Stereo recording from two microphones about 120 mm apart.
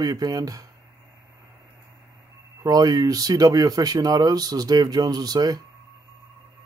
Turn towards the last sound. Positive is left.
turn(degrees=-35)  # may be behind; listen again after turning